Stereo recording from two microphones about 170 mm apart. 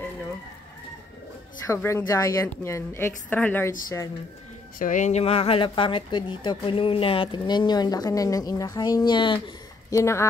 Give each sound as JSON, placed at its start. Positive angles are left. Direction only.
{"t": 1.7, "sound": "a woman's voice", "side_deg": 15}
{"t": 4.7, "sound": "speech", "side_deg": 50}
{"t": 9.8, "sound": "a woman's voice", "side_deg": 15}